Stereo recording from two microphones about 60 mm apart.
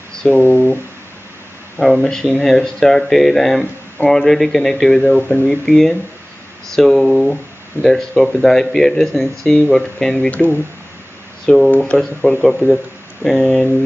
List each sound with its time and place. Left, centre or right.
0.3 s speech: left
1.8 s speech: centre
10.3 s speech: left
11.4 s speech: centre
12.4 s speech: centre